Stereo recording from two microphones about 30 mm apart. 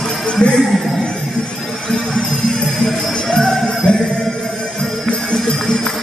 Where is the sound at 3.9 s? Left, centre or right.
Left.